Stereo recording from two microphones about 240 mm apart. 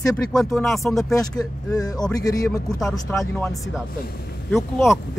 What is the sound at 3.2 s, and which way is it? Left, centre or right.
Speech, centre.